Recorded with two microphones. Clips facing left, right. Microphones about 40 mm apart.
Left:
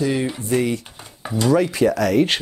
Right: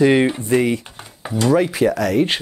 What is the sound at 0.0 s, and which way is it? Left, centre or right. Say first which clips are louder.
Speech: right 7 dB; right.